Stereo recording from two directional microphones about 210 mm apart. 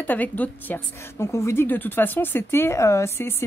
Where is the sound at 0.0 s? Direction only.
10° left (ahead or behind).